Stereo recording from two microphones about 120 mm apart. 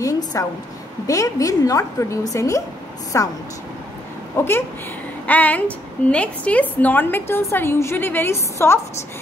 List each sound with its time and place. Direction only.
0.0 s a sound: 30° left (ahead or behind)
1.0 s a woman's voice: 25° left (ahead or behind)
4.4 s a woman's voice: 20° left (ahead or behind)